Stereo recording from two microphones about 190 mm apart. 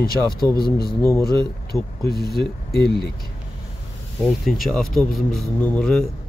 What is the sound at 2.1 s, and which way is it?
Speech, 55° left (ahead or behind).